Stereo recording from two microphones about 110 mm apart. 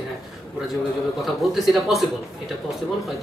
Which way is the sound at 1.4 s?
Centre (ahead or behind).